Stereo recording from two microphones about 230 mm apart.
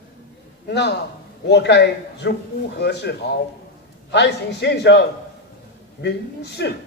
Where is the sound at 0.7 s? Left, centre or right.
Left.